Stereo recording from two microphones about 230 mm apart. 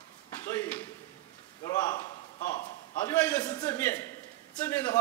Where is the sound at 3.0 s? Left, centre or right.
Centre.